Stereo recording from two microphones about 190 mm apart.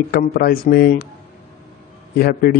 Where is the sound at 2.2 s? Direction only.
55° left (ahead or behind).